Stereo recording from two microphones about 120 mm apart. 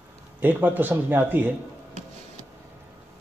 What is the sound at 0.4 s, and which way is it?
Speech, 15° right (ahead or behind).